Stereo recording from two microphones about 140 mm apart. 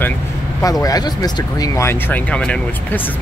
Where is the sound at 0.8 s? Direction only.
25° left (ahead or behind).